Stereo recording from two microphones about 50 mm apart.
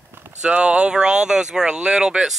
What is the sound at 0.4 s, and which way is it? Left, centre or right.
Speech, right.